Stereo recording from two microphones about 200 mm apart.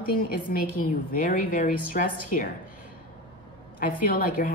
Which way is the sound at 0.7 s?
45° left (ahead or behind).